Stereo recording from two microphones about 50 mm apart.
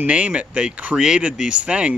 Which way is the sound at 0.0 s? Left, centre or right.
Right.